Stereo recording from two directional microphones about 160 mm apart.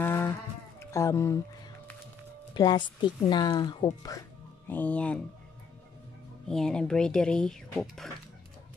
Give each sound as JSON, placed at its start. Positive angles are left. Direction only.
{"t": 0.0, "sound": "music", "side_deg": 15}
{"t": 0.7, "sound": "speech", "side_deg": 20}
{"t": 2.5, "sound": "speech", "side_deg": 25}
{"t": 4.6, "sound": "speech", "side_deg": 10}
{"t": 6.4, "sound": "speech", "side_deg": 5}